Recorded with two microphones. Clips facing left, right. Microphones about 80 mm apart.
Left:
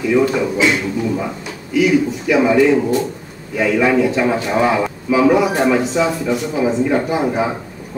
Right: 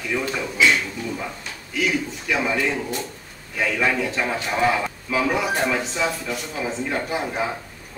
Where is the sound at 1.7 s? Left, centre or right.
Centre.